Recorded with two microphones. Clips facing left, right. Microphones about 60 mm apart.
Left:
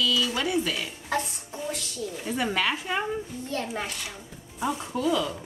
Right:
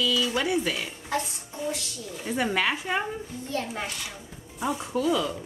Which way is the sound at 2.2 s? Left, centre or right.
Centre.